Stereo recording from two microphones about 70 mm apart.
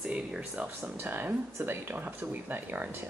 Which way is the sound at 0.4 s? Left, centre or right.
Right.